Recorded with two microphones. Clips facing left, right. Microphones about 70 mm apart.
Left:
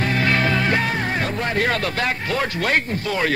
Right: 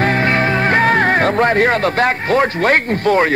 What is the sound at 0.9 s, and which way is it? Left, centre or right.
Speech, right.